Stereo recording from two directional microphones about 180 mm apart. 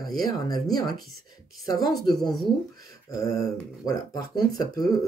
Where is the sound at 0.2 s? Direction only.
20° left (ahead or behind).